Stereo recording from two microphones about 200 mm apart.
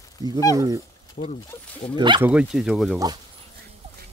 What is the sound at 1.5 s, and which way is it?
Speech, 15° left (ahead or behind).